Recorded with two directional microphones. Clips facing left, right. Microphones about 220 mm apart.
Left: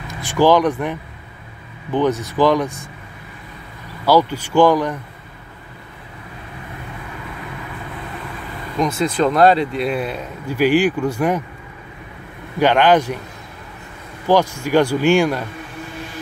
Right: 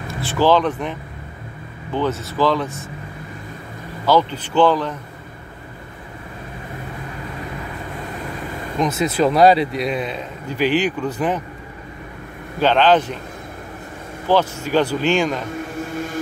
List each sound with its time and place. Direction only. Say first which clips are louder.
0.1 s speech: left 2 dB; 15° left (ahead or behind)
2.0 s speech: left 3 dB; 15° left (ahead or behind)
4.0 s speech: left 2 dB; 10° left (ahead or behind)
9.0 s speech: even; 5° right (ahead or behind); by 11.4 s 10° left (ahead or behind)
12.5 s speech: left 1 dB; 10° left (ahead or behind)
14.2 s speech: left 2 dB; 15° left (ahead or behind)